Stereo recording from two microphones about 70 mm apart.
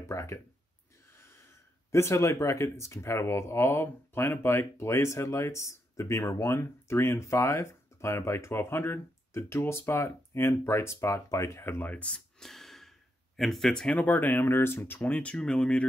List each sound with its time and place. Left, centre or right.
0.0 s speech: left
11.9 s a sound: centre
13.4 s speech: centre
13.9 s speech: left
15.0 s speech: centre